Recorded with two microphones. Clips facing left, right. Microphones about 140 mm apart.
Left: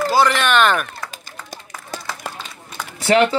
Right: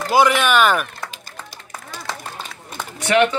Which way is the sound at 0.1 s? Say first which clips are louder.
Right 3 dB; 10° right (ahead or behind).